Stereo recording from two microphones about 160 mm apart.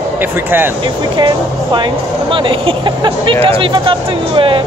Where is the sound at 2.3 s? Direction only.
35° right (ahead or behind).